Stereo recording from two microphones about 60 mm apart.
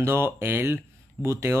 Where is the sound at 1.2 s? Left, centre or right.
Right.